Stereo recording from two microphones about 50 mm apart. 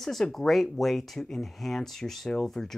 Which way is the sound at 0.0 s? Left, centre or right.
Centre.